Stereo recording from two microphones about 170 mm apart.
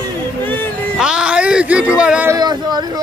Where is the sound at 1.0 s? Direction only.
5° right (ahead or behind).